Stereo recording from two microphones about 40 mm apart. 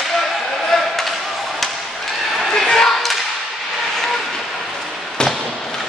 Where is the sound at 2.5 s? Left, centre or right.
Centre.